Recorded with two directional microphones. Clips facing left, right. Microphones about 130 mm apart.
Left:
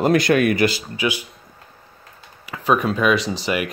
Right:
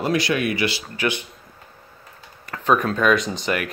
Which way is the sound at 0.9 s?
10° left (ahead or behind).